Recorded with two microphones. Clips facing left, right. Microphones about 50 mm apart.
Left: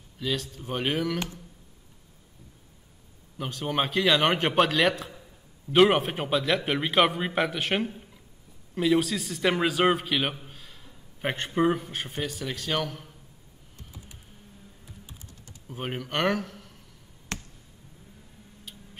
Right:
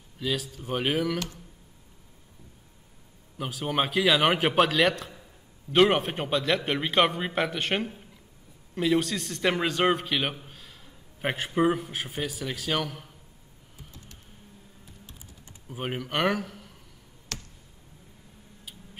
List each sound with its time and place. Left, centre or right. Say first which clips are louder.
0.2 s a man's voice: even; centre
3.3 s a man's voice: even; centre
15.7 s a man's voice: right 1 dB; centre
17.3 s a sound: left 3 dB; left